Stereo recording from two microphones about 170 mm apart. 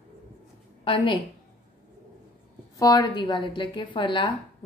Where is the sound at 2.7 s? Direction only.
25° left (ahead or behind).